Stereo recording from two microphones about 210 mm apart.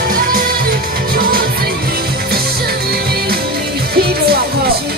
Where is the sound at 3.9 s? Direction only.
50° right (ahead or behind).